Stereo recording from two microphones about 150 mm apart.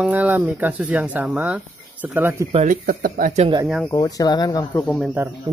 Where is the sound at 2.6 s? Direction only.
70° right (ahead or behind).